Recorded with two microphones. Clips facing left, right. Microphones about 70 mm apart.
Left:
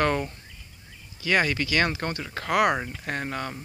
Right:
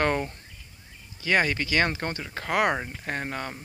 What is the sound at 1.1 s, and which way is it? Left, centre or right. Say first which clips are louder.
Speech: even; right.